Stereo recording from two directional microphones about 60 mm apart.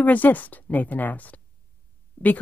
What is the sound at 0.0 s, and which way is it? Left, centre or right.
Speech, left.